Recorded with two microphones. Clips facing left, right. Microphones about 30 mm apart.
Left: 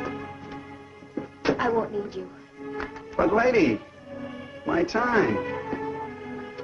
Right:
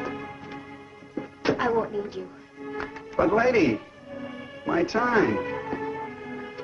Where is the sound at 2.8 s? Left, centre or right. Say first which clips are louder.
Even; centre.